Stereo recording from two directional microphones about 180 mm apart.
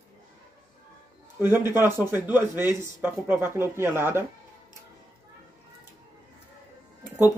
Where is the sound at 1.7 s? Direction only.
10° right (ahead or behind).